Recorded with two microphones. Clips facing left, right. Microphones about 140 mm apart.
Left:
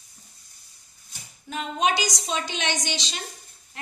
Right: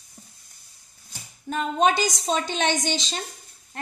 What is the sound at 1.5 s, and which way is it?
A woman's voice, 45° right (ahead or behind).